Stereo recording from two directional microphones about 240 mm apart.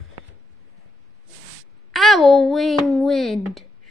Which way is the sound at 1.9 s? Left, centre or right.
Centre.